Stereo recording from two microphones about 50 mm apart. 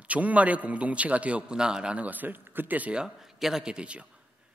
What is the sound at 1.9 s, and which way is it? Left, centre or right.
Speech, right.